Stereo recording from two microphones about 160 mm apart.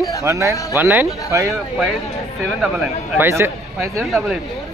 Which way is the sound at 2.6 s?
5° right (ahead or behind).